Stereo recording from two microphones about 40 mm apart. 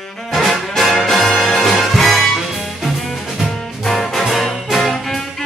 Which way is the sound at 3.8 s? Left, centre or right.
Centre.